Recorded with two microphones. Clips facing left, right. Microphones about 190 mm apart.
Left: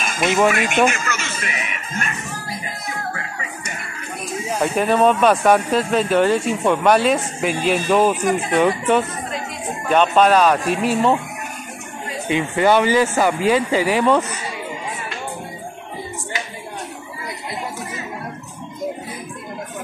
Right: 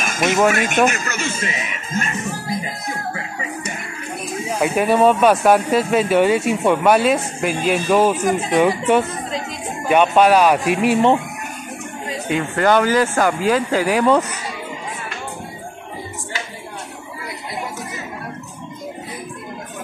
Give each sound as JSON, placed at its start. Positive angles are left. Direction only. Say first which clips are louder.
{"t": 0.0, "sound": "a sound", "louder": "right 1 dB", "side_deg": -45}
{"t": 0.5, "sound": "speech", "louder": "right 1 dB", "side_deg": -45}
{"t": 4.6, "sound": "speech", "louder": "right 1 dB", "side_deg": -5}
{"t": 12.3, "sound": "speech", "louder": "left 1 dB", "side_deg": 5}